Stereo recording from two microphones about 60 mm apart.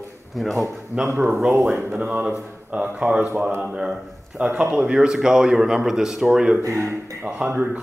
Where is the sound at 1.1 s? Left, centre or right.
Right.